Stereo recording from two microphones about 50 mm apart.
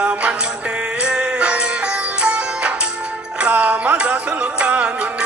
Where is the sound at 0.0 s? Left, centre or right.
Right.